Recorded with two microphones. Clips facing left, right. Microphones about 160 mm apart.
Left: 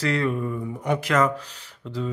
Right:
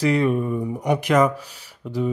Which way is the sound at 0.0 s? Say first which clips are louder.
Right 5 dB; 15° right (ahead or behind).